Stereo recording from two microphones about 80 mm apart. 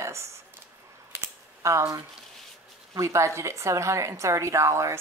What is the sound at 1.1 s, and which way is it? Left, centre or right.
Typing, right.